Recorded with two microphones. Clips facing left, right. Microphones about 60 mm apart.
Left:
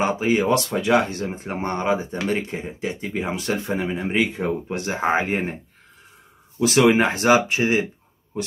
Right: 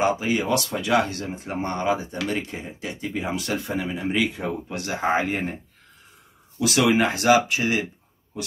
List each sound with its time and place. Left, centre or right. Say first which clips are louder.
0.0 s speech: left 2 dB; left
6.6 s speech: left 3 dB; left